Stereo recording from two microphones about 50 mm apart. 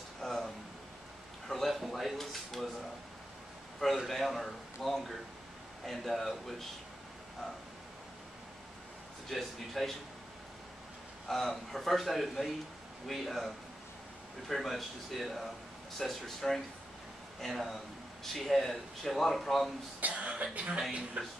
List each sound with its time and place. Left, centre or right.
0.2 s a sound: centre
1.5 s a sound: centre
4.1 s speech: centre
9.3 s speech: centre
11.2 s speech: centre
14.5 s speech: centre
20.0 s speech: right